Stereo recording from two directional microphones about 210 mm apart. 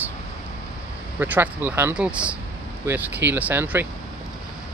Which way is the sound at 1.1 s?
10° right (ahead or behind).